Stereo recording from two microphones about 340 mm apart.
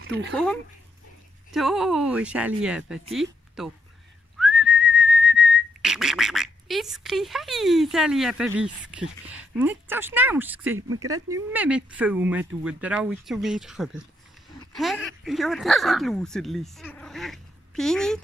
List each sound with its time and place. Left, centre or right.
0.0 s speech: right
0.3 s speech: centre
4.4 s whistling: centre
9.2 s speech: centre